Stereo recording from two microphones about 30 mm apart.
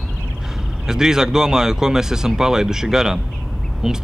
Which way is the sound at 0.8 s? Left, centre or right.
Centre.